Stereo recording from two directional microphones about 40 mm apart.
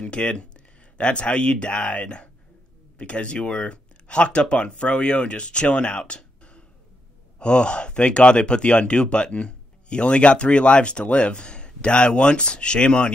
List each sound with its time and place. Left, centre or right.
0.0 s speech: left